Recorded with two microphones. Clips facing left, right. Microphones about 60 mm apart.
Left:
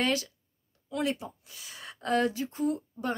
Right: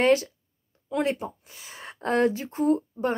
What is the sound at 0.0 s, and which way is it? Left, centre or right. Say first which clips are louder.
Speech: right 8 dB; right.